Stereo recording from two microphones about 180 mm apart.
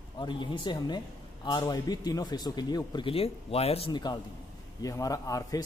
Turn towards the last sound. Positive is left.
turn(degrees=20)  # may be behind; listen again after turning